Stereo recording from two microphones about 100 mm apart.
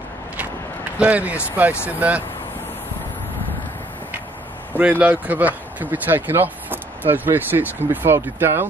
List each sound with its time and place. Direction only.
0.9 s speech: 15° right (ahead or behind)
4.7 s speech: 15° right (ahead or behind)